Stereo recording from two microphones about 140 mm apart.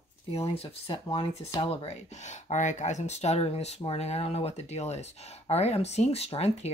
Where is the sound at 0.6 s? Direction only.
40° left (ahead or behind).